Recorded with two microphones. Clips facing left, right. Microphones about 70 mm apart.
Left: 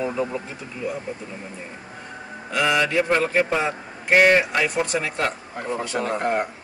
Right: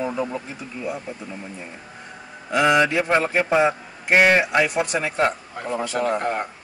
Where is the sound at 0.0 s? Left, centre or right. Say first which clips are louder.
Even; right.